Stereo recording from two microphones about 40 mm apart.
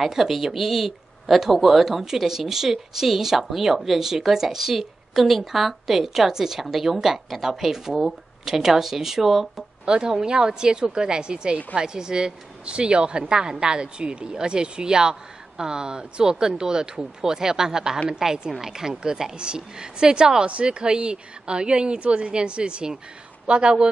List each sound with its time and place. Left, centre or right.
0.0 s speech: centre
9.8 s a woman's voice: centre